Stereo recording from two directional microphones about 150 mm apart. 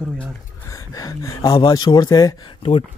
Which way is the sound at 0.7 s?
20° left (ahead or behind).